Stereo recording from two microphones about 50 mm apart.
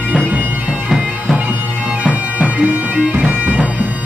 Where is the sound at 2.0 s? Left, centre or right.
Right.